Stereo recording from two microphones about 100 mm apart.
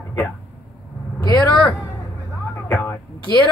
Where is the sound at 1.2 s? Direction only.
35° left (ahead or behind).